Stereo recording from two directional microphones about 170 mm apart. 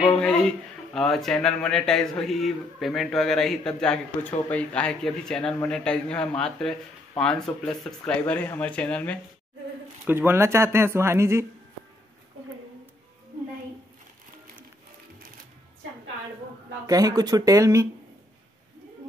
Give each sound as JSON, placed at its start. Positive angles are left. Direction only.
{"t": 0.2, "sound": "speech", "side_deg": 5}
{"t": 10.0, "sound": "speech", "side_deg": -15}
{"t": 16.8, "sound": "speech", "side_deg": -20}